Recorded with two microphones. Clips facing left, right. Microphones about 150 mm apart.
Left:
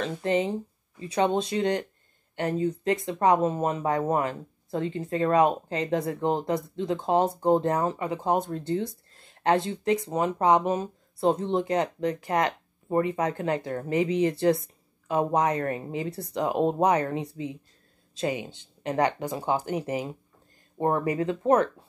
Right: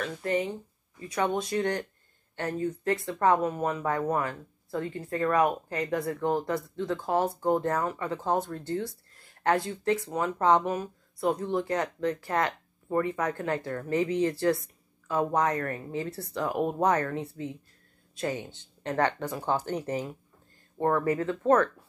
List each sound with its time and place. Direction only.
0.0 s speech: 25° left (ahead or behind)